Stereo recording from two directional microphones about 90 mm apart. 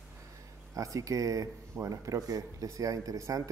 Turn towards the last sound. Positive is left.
turn(degrees=-40)  # may be behind; listen again after turning